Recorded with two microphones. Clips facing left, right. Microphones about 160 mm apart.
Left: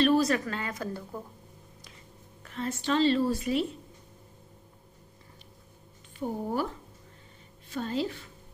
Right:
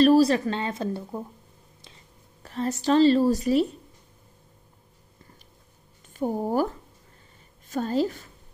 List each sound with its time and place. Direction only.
0.0 s speech: 35° right (ahead or behind)
2.4 s a woman's voice: 40° right (ahead or behind)
6.1 s a woman's voice: 45° right (ahead or behind)
7.7 s a woman's voice: 40° right (ahead or behind)